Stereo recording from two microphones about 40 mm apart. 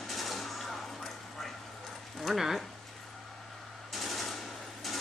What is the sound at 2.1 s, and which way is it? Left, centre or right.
Speech, centre.